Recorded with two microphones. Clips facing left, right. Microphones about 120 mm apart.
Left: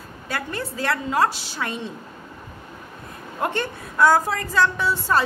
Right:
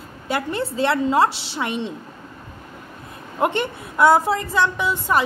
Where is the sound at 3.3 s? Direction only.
20° right (ahead or behind).